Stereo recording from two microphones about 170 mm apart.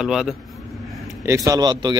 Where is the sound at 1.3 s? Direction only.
20° right (ahead or behind).